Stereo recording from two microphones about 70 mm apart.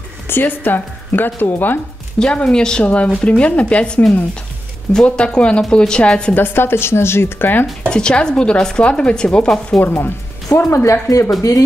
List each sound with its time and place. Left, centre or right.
0.3 s speech: left
2.1 s speech: centre
6.3 s a woman's voice: left
7.9 s speech: centre
9.8 s speech: left
10.6 s speech: left